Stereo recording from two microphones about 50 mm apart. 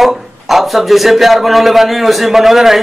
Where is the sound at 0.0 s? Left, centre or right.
Centre.